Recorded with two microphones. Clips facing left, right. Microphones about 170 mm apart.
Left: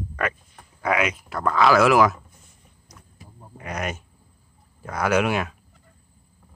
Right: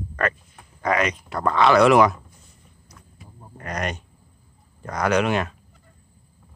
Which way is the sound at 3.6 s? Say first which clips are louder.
Right 1 dB; 5° left (ahead or behind).